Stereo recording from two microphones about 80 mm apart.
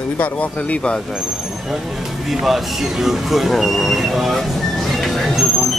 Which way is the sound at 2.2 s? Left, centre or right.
Centre.